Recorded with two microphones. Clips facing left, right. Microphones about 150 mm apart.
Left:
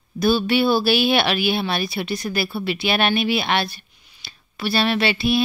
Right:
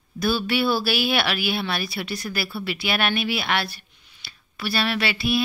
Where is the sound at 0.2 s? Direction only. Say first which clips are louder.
Left 5 dB; 25° left (ahead or behind).